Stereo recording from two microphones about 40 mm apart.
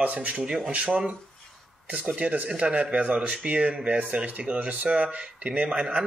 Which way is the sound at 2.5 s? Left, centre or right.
Right.